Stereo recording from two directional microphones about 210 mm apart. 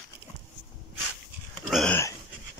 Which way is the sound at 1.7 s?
Centre (ahead or behind).